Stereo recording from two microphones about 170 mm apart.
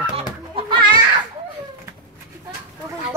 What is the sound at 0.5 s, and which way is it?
Children playing, 30° right (ahead or behind).